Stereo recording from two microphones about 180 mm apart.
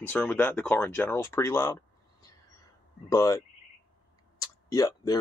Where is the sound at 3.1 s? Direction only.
20° left (ahead or behind).